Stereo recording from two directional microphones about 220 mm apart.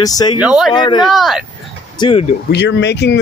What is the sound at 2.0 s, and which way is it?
Speech, 25° left (ahead or behind).